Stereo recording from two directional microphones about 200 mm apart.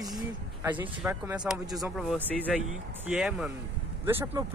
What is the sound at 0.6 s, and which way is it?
Speech, 10° right (ahead or behind).